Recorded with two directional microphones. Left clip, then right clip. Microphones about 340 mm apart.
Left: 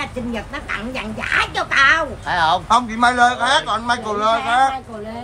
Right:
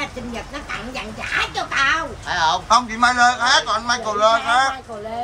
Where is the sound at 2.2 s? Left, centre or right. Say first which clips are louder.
Left 2 dB; centre.